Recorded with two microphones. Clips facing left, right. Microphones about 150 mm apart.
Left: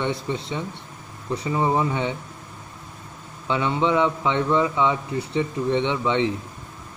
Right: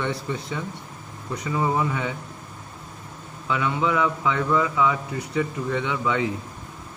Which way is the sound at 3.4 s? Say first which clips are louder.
Left 2 dB; 25° left (ahead or behind).